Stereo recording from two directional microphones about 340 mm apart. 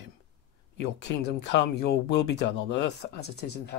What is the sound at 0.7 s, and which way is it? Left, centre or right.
Speech, left.